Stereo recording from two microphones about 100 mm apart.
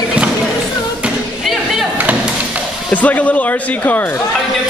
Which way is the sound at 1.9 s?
15° right (ahead or behind).